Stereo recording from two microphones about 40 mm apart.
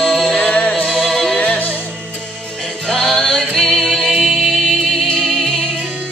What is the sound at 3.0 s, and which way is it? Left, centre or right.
Music, centre.